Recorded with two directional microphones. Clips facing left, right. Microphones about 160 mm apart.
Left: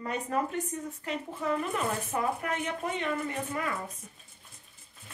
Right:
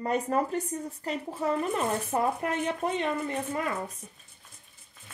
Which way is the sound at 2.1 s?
35° right (ahead or behind).